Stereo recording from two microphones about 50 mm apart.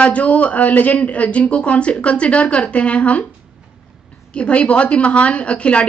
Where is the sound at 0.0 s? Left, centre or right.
Left.